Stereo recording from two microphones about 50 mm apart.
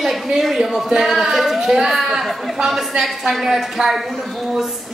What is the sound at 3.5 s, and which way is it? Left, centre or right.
Speech, centre.